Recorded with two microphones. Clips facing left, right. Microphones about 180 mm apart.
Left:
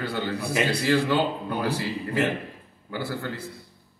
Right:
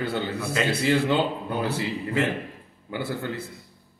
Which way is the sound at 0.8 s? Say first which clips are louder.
Right 1 dB; 20° right (ahead or behind).